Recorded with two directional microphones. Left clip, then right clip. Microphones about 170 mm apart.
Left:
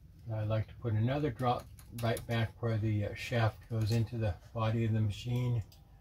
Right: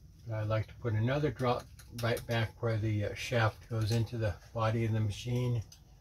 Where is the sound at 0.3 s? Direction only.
20° left (ahead or behind).